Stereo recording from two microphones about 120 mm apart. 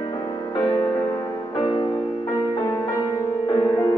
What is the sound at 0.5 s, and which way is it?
Music, 35° left (ahead or behind).